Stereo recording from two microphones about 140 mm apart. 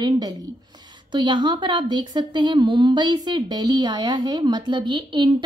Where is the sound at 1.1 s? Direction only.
35° right (ahead or behind).